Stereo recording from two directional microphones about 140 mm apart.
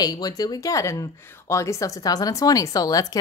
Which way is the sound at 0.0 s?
30° left (ahead or behind).